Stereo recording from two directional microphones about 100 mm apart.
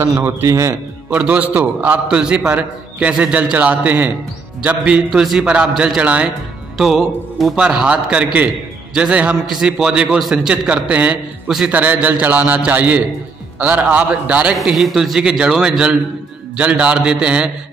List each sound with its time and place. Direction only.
0.2 s a man's voice: 25° right (ahead or behind)
1.1 s a man's voice: 15° right (ahead or behind)
5.2 s a man's voice: centre (ahead or behind)
14.6 s a man's voice: centre (ahead or behind)